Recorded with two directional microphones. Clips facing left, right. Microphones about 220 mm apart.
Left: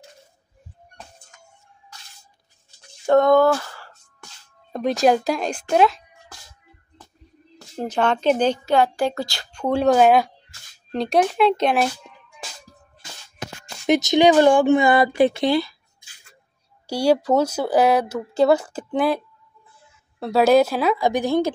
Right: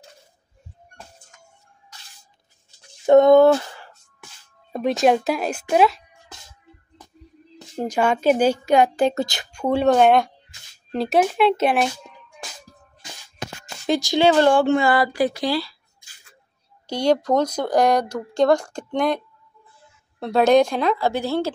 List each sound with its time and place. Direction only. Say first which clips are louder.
3.1 s speech: right 4 dB; 20° right (ahead or behind)
4.7 s speech: even; centre (ahead or behind)
6.3 s music: right 2 dB; 25° right (ahead or behind)
7.7 s a woman's voice: right 1 dB; 10° right (ahead or behind)
9.6 s speech: even; centre (ahead or behind)
13.8 s speech: left 2 dB; 20° left (ahead or behind)
16.8 s speech: left 1 dB; 10° left (ahead or behind)